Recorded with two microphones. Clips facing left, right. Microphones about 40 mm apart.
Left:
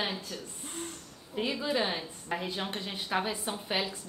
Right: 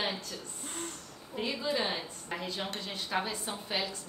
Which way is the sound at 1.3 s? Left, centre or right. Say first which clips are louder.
Left 2 dB; centre.